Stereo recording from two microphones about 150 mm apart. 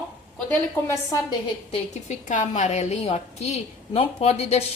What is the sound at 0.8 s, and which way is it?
Speech, 20° left (ahead or behind).